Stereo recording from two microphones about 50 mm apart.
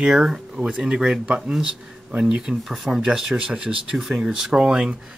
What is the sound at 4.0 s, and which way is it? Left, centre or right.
Speech, centre.